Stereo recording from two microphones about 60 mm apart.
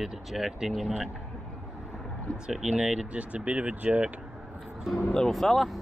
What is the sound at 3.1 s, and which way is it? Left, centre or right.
Speech, right.